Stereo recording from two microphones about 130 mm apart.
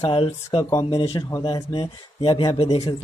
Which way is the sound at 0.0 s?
45° left (ahead or behind).